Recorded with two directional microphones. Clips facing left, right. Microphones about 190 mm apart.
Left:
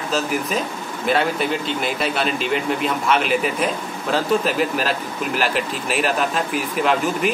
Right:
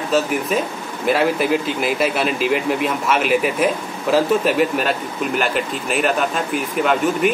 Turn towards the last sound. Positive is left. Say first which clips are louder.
# right 2 dB
turn(degrees=0)  # may be behind; listen again after turning